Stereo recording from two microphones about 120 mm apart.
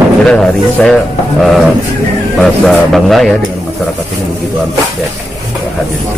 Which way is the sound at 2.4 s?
Centre (ahead or behind).